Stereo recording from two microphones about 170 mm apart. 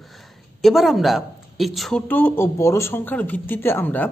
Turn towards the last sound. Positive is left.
turn(degrees=10)  # may be behind; listen again after turning